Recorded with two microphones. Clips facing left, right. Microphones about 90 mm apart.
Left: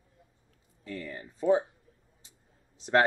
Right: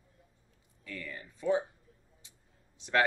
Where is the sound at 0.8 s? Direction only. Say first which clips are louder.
Left 4 dB; 35° left (ahead or behind).